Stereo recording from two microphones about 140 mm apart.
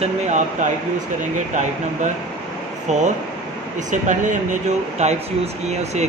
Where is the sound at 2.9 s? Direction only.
55° right (ahead or behind).